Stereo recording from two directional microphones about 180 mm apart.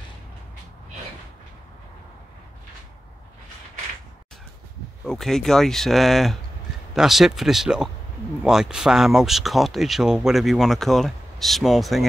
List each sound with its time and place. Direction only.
5.0 s speech: centre (ahead or behind)